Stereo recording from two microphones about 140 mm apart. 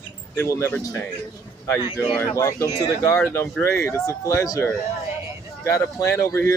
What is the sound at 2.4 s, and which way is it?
Speech, 20° left (ahead or behind).